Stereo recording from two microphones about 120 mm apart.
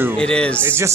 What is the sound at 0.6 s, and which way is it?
Speech, 20° right (ahead or behind).